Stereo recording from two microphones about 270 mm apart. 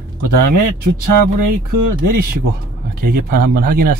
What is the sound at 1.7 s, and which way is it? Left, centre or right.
Speech, right.